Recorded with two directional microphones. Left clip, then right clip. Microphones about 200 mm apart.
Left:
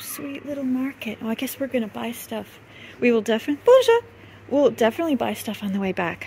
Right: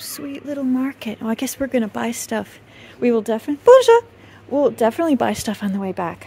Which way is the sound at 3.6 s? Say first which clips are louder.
Right 5 dB; 25° right (ahead or behind).